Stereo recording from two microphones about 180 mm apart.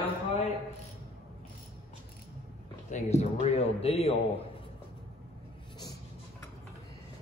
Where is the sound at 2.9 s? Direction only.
35° left (ahead or behind).